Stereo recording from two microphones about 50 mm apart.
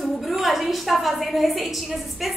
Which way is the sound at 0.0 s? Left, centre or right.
Centre.